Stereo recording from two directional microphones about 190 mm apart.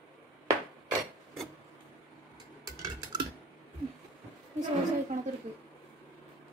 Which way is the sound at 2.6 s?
20° right (ahead or behind).